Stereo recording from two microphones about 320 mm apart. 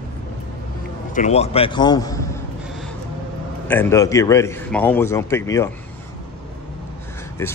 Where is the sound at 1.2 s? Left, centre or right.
Centre.